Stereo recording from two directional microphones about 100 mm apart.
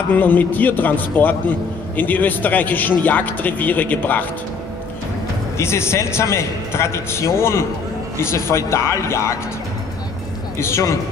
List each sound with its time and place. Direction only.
0.1 s speech: 15° left (ahead or behind)
5.6 s a man's voice: 25° left (ahead or behind)
10.6 s a man's voice: 30° left (ahead or behind)